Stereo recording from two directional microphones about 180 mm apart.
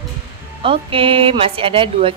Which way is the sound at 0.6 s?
30° right (ahead or behind).